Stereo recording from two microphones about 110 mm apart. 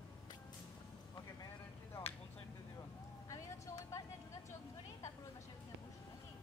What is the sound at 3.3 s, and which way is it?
Vehicle, 30° left (ahead or behind).